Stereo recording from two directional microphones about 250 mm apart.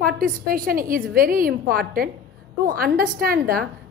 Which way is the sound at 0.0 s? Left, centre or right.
Right.